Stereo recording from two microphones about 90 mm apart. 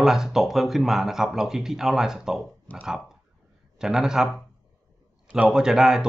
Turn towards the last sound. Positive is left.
turn(degrees=-5)  # may be behind; listen again after turning